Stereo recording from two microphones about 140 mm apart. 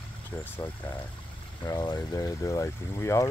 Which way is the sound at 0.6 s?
25° left (ahead or behind).